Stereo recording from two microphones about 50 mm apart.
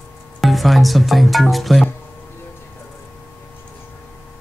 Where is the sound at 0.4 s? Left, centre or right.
Centre.